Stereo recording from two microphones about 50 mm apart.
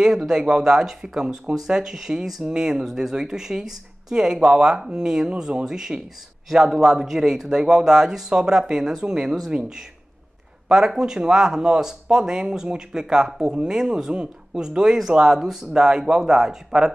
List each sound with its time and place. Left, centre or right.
0.0 s speech: centre